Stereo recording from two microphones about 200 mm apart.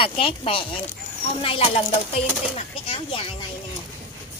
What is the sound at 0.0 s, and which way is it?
Speech, 25° left (ahead or behind).